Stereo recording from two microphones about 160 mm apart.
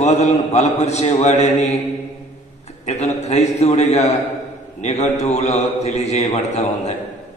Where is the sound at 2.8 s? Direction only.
45° left (ahead or behind).